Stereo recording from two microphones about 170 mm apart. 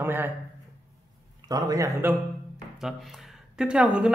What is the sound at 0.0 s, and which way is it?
Speech, 10° right (ahead or behind).